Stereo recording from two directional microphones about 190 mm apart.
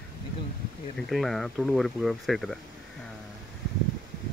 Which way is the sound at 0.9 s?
Centre (ahead or behind).